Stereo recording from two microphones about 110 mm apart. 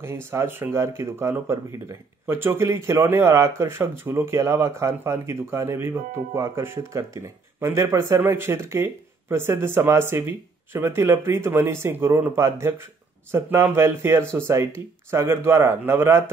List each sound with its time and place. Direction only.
0.0 s speech: 25° right (ahead or behind)